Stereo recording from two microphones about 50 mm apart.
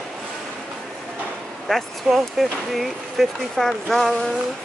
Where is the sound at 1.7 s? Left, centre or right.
Centre.